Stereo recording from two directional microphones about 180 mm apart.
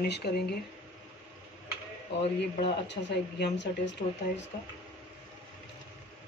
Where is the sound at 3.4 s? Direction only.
75° left (ahead or behind).